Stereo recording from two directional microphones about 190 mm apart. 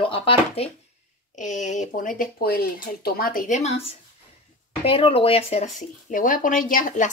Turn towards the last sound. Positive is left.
turn(degrees=40)  # may be behind; listen again after turning